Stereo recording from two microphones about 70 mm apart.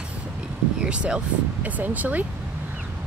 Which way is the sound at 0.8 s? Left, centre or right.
Centre.